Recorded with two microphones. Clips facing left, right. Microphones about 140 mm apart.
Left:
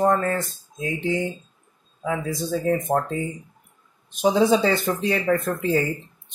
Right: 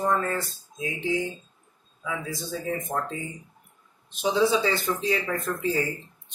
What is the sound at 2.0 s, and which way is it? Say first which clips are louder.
Speech: left 7 dB; 50° left (ahead or behind).